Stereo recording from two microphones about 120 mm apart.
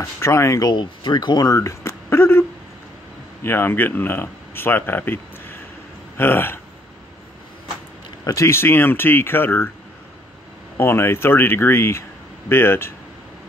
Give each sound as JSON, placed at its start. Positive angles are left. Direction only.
{"t": 0.0, "sound": "speech", "side_deg": 25}
{"t": 3.4, "sound": "speech", "side_deg": 20}
{"t": 8.2, "sound": "speech", "side_deg": 30}
{"t": 10.8, "sound": "speech", "side_deg": 20}